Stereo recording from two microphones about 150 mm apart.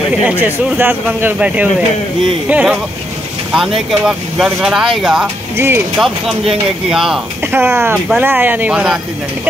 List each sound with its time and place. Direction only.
0.2 s speech: 10° right (ahead or behind)
7.6 s speech: 15° right (ahead or behind)